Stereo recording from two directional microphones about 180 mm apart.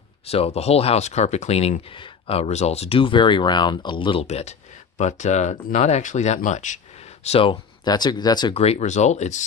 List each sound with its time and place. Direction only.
0.3 s speech: 35° left (ahead or behind)
7.2 s speech: 30° left (ahead or behind)
8.5 s speech: 35° left (ahead or behind)